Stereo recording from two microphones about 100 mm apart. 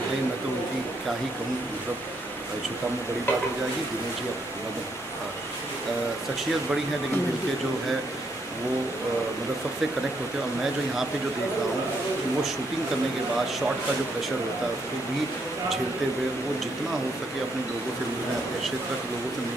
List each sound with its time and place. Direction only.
3.3 s speech: 20° left (ahead or behind)